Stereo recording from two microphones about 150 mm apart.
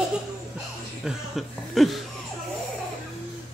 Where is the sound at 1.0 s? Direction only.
Centre (ahead or behind).